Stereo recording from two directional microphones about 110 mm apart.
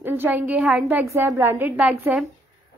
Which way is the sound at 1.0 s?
25° right (ahead or behind).